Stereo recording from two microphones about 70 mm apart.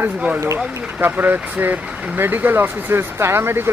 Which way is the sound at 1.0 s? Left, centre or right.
Right.